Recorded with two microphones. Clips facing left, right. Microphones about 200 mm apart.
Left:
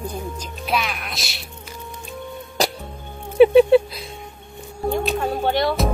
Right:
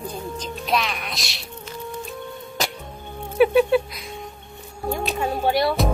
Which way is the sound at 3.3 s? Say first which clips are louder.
Left 5 dB; 25° left (ahead or behind).